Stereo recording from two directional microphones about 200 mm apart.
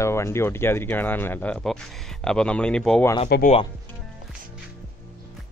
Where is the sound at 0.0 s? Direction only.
15° left (ahead or behind).